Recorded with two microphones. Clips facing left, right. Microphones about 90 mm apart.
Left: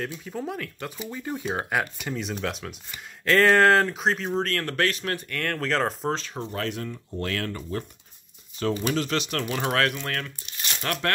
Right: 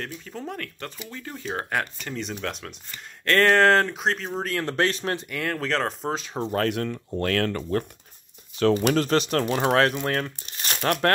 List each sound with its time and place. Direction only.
0.0 s speech: 5° left (ahead or behind)
4.5 s speech: 15° right (ahead or behind)
5.3 s speech: 5° right (ahead or behind)
6.5 s speech: 60° right (ahead or behind)
8.9 s speech: 40° right (ahead or behind)